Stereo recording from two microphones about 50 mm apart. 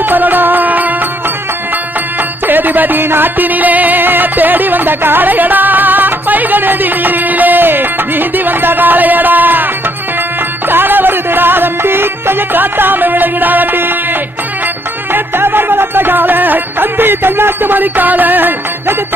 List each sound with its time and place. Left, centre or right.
0.0 s music: right
2.4 s music: right
10.7 s music: right
15.1 s music: right